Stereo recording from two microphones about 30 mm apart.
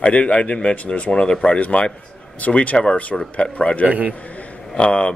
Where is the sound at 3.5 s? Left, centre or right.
Left.